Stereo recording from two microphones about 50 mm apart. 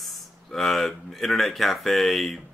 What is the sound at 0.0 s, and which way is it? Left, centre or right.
Speech, centre.